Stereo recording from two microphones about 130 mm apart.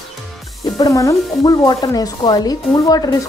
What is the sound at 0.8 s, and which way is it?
Speech, 25° left (ahead or behind).